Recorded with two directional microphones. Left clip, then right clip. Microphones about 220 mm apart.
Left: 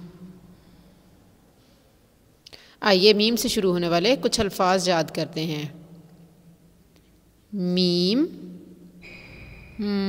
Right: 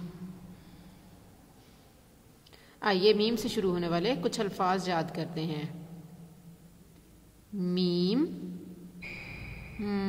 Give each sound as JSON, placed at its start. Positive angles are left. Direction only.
{"t": 2.4, "sound": "a woman's voice", "side_deg": 25}
{"t": 7.5, "sound": "a woman's voice", "side_deg": 20}
{"t": 9.8, "sound": "a sound", "side_deg": 15}